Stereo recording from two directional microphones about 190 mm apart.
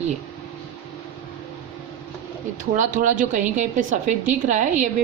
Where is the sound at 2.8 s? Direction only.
40° right (ahead or behind).